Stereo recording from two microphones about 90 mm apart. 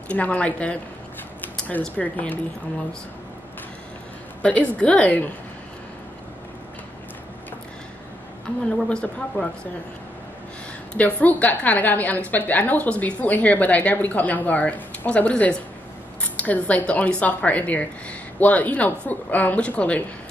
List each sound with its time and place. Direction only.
0.1 s a woman's voice: 15° left (ahead or behind)
1.4 s a sound: 20° left (ahead or behind)
1.8 s a woman's voice: 15° left (ahead or behind)
4.4 s a woman's voice: 15° left (ahead or behind)
8.8 s a woman's voice: 10° left (ahead or behind)
11.0 s a woman's voice: 15° left (ahead or behind)